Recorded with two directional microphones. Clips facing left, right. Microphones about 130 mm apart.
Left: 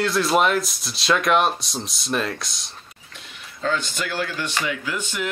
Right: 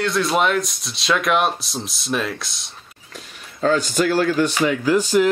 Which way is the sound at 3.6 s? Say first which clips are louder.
Right 7 dB; 40° right (ahead or behind).